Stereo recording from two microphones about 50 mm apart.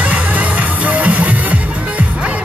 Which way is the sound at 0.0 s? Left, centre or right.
Right.